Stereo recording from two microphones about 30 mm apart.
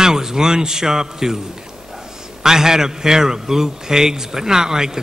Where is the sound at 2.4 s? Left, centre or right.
Centre.